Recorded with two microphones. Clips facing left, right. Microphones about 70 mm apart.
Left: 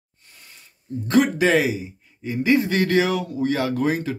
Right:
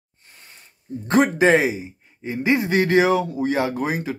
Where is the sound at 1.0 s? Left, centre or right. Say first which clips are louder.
Right 1 dB; right.